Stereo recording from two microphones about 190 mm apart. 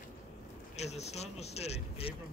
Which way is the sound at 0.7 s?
35° left (ahead or behind).